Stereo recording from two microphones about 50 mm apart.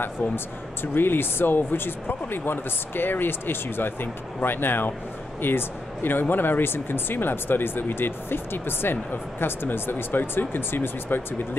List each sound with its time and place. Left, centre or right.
0.9 s speech: left